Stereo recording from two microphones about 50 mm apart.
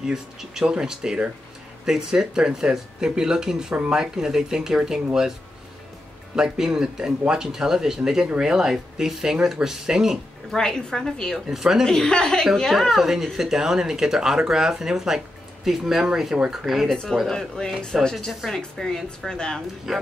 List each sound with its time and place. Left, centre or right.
0.0 s speech: centre
4.0 s speech: centre
6.3 s speech: centre
10.5 s a woman's voice: centre
11.4 s speech: centre
11.8 s a woman's voice: centre
12.7 s speech: centre
16.9 s a woman's voice: centre
19.9 s speech: centre